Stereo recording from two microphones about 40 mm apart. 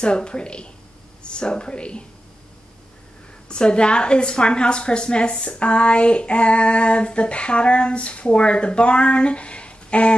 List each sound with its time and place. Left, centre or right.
0.0 s female singing: left
3.4 s female singing: left
5.6 s female singing: left